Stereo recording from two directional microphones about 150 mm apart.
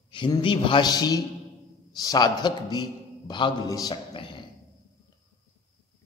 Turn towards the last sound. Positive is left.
turn(degrees=35)  # may be behind; listen again after turning